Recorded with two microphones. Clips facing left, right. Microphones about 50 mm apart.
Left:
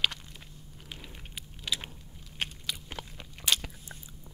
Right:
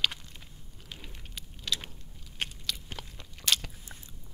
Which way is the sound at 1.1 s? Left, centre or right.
Centre.